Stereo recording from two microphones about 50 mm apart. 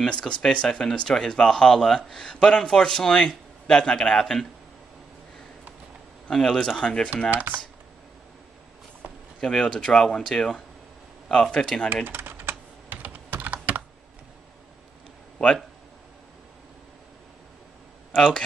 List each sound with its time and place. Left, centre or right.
0.0 s speech: centre
3.3 s speech: centre
6.3 s speech: centre
7.2 s speech: right
9.4 s speech: centre
12.1 s computer keyboard: right
18.1 s speech: left